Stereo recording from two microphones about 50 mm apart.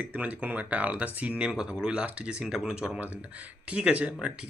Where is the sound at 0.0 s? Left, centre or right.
Right.